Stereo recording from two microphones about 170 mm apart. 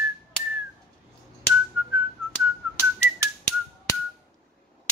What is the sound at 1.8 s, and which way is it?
Whistling, 10° right (ahead or behind).